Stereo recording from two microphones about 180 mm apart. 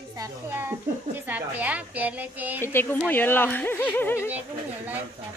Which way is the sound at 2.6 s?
15° left (ahead or behind).